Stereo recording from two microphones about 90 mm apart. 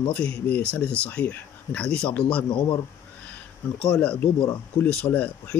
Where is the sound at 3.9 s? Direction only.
15° left (ahead or behind).